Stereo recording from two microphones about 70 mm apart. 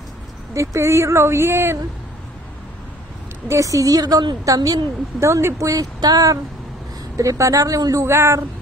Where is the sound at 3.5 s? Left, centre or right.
Right.